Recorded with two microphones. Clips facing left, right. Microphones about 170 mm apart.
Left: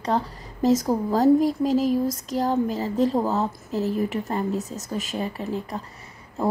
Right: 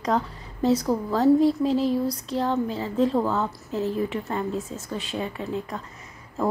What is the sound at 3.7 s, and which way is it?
Speech, 5° left (ahead or behind).